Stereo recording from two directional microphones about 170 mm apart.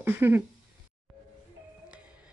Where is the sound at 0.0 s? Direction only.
10° right (ahead or behind).